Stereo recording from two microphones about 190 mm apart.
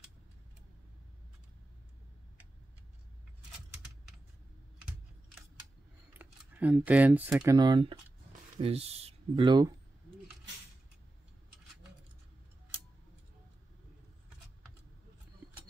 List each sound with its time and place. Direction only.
6.1 s speech: 10° right (ahead or behind)
7.5 s speech: 25° right (ahead or behind)